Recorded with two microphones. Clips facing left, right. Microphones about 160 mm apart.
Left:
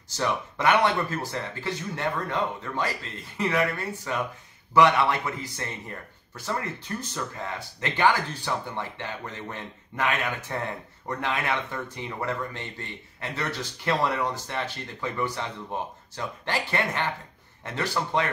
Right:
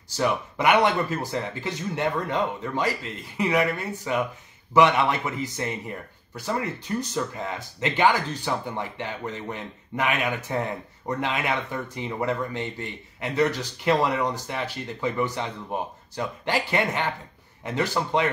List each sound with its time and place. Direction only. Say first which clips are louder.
0.2 s speech: right 2 dB; 15° right (ahead or behind)